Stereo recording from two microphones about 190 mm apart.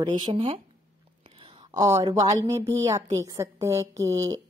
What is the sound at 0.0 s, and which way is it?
A woman's voice, 25° right (ahead or behind).